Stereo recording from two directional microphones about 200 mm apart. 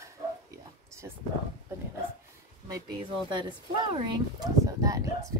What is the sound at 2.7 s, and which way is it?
Speech, 20° right (ahead or behind).